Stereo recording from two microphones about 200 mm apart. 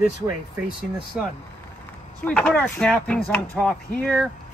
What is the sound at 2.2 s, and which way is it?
Speech, 5° left (ahead or behind).